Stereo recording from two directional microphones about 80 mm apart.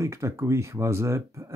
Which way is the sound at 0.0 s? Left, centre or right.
Right.